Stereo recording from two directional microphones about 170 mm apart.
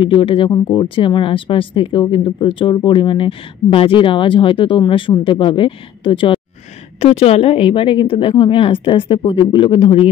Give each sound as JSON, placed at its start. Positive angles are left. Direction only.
{"t": 0.0, "sound": "a woman's voice", "side_deg": 30}